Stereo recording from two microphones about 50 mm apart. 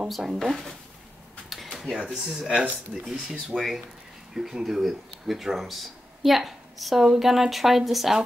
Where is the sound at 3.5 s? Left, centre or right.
Centre.